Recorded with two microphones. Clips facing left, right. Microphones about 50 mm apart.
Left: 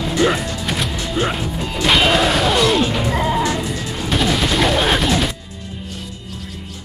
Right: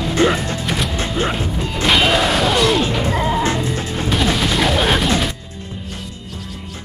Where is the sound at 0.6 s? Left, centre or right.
Centre.